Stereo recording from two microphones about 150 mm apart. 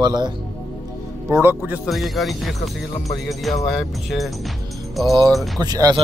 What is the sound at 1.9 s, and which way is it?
Speech, centre (ahead or behind).